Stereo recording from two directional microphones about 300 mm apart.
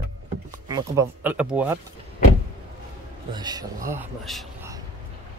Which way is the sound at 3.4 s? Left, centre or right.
Centre.